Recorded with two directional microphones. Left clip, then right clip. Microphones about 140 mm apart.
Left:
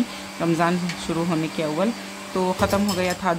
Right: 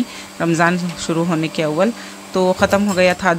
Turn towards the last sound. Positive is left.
turn(degrees=-35)  # may be behind; listen again after turning